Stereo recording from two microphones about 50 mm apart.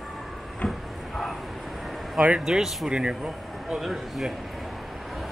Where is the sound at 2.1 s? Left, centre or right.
Centre.